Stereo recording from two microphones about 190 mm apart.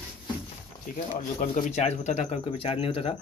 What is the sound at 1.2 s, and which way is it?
Speech, 45° left (ahead or behind).